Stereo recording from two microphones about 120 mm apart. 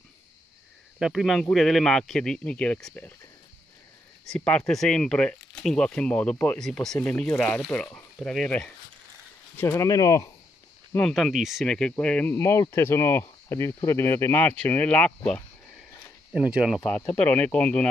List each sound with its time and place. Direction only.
0.9 s a man's voice: 5° right (ahead or behind)
4.3 s speech: 5° left (ahead or behind)
6.6 s a man's voice: 5° left (ahead or behind)
9.6 s speech: 25° left (ahead or behind)
11.0 s a man's voice: 5° left (ahead or behind)
12.4 s speech: 20° left (ahead or behind)
16.3 s speech: 10° right (ahead or behind)
16.8 s speech: 10° left (ahead or behind)